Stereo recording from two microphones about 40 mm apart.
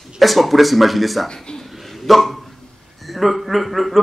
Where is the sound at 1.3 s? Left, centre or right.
Centre.